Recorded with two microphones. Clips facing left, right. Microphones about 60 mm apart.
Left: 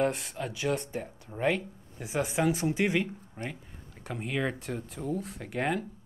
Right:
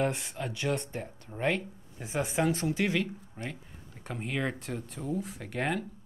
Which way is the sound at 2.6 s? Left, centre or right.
Left.